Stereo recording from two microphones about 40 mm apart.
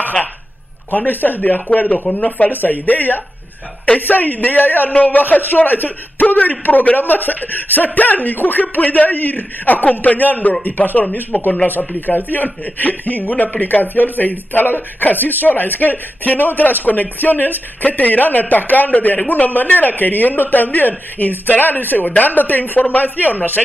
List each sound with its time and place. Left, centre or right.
0.9 s a man's voice: left
1.7 s speech: left
2.5 s a man's voice: left
4.9 s a man's voice: left
5.5 s a man's voice: left